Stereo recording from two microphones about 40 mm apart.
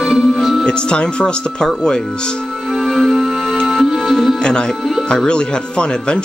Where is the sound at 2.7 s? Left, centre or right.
Centre.